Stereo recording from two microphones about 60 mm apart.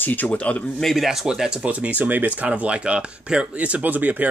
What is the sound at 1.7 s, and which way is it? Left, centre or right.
Speech, right.